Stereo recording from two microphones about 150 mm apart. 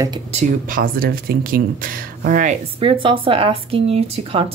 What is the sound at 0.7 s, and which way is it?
Speech, 85° right.